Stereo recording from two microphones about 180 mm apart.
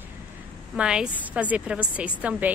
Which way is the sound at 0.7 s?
5° right (ahead or behind).